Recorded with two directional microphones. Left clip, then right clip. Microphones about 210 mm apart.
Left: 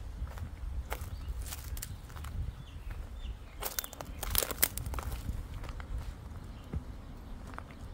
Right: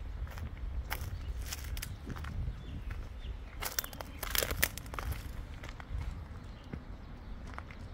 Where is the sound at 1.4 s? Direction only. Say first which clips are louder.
Right 3 dB; centre (ahead or behind).